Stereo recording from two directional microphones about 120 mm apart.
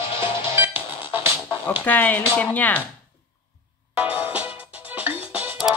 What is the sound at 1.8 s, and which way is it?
Speech, 15° left (ahead or behind).